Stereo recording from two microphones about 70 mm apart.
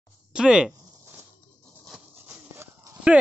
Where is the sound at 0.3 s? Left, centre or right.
Centre.